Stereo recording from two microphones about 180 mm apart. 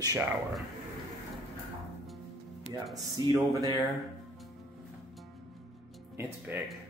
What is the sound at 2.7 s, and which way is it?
Speech, 20° right (ahead or behind).